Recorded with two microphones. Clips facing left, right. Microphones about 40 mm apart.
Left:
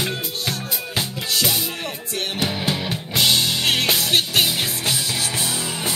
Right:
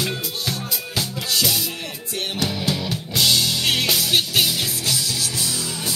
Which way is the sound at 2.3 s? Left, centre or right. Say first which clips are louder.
Even; left.